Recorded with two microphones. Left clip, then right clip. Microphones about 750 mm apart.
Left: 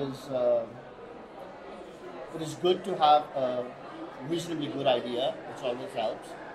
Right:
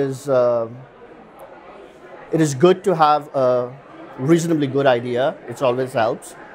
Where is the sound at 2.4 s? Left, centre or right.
Right.